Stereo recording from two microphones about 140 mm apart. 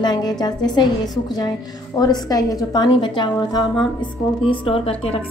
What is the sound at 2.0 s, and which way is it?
A woman's voice, 25° left (ahead or behind).